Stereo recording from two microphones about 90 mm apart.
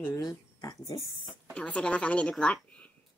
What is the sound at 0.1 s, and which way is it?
Speech, 40° left (ahead or behind).